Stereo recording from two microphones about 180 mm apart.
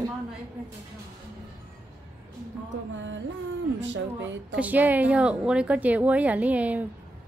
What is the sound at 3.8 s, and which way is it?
Speech, 90° right.